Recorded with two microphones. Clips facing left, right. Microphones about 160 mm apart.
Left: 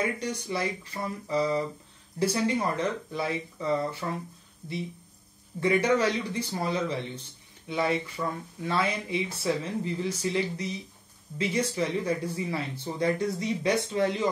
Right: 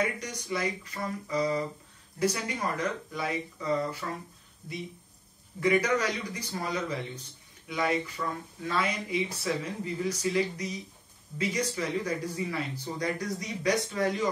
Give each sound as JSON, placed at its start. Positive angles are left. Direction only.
{"t": 0.0, "sound": "speech", "side_deg": 30}
{"t": 5.6, "sound": "speech", "side_deg": 30}